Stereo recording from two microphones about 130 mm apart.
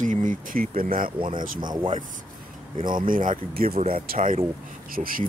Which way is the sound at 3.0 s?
90° right.